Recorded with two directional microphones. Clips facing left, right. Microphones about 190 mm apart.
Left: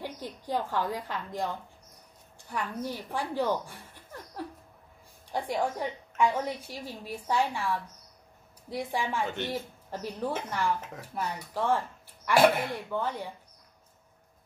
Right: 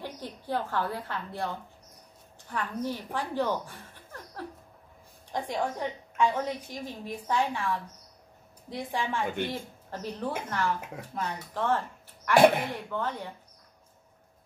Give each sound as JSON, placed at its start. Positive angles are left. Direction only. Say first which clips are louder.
{"t": 0.0, "sound": "a woman's voice", "louder": "left 1 dB", "side_deg": 15}
{"t": 9.2, "sound": "speech", "louder": "right 2 dB", "side_deg": -10}
{"t": 9.8, "sound": "a woman's voice", "louder": "even", "side_deg": 10}
{"t": 12.4, "sound": "speech", "louder": "right 2 dB", "side_deg": -15}
{"t": 12.7, "sound": "a woman's voice", "louder": "left 1 dB", "side_deg": 10}